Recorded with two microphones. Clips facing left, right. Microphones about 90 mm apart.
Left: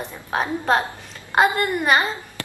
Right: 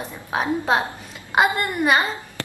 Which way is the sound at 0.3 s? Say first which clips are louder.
Even; 10° right (ahead or behind).